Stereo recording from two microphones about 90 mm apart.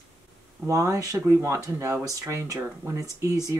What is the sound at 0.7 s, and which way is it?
Speech, 35° right (ahead or behind).